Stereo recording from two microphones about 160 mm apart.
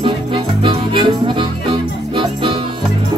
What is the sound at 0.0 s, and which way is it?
Music, 35° right (ahead or behind).